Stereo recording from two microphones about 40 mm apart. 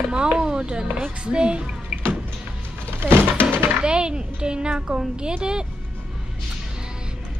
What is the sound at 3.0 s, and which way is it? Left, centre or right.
Speech, right.